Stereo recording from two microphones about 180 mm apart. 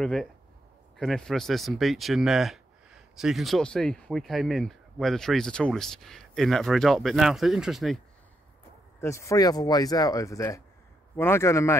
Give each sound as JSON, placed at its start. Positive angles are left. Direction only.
{"t": 0.0, "sound": "speech", "side_deg": 5}
{"t": 9.0, "sound": "a man's voice", "side_deg": 15}